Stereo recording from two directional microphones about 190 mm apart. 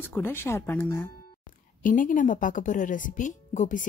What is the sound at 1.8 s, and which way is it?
Speech, 45° left (ahead or behind).